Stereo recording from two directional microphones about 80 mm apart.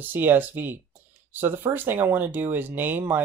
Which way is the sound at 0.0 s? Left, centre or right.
Right.